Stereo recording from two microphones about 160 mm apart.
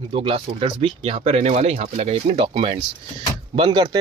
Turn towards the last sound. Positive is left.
turn(degrees=-30)  # may be behind; listen again after turning